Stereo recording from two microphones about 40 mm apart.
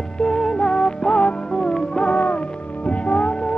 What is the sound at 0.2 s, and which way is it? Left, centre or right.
Music, left.